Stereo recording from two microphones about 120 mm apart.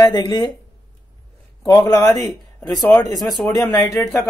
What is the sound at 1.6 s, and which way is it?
Speech, 25° left (ahead or behind).